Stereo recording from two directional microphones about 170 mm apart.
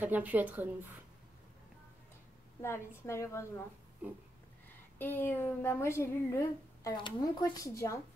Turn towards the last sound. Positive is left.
turn(degrees=20)  # may be behind; listen again after turning